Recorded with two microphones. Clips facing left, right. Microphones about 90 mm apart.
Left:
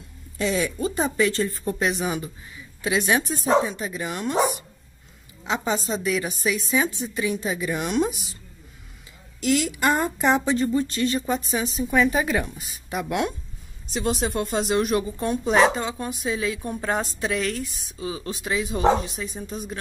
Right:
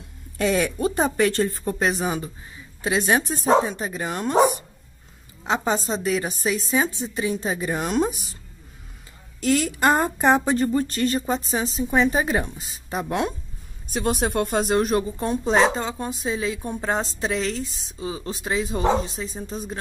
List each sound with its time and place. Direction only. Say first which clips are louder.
0.4 s a woman's voice: right 3 dB; 55° right (ahead or behind)
1.6 s speech: right 1 dB; 35° right (ahead or behind)
9.4 s speech: right 2 dB; 40° right (ahead or behind)
13.8 s speech: right 2 dB; 50° right (ahead or behind); by 19.8 s 30° right (ahead or behind)